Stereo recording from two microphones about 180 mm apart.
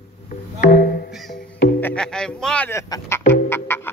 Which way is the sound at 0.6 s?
50° left (ahead or behind).